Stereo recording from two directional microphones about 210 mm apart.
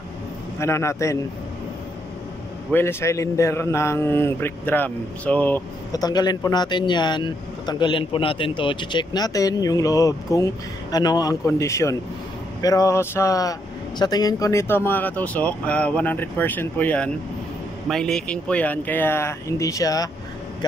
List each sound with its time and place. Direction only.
0.6 s a man's voice: 15° left (ahead or behind)
2.7 s a man's voice: 10° left (ahead or behind)